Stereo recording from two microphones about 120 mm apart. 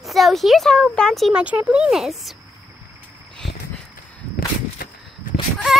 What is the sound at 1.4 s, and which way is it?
Speech, 10° right (ahead or behind).